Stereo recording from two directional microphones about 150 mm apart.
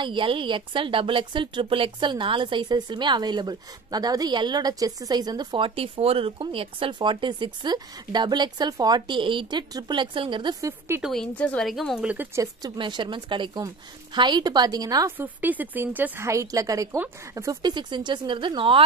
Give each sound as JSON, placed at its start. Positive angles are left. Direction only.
{"t": 0.0, "sound": "speech", "side_deg": -35}
{"t": 11.0, "sound": "speech", "side_deg": 0}
{"t": 12.4, "sound": "a woman's voice", "side_deg": -30}
{"t": 15.1, "sound": "a woman's voice", "side_deg": -10}